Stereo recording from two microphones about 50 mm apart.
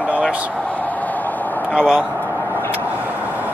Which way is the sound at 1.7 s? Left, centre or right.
Right.